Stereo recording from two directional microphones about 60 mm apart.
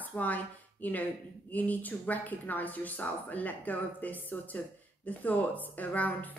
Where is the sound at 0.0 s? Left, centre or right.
Left.